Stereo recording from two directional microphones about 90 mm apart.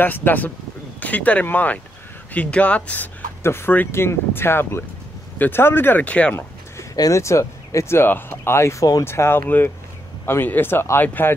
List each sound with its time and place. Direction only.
0.0 s speech: 20° left (ahead or behind)
7.0 s speech: 35° left (ahead or behind)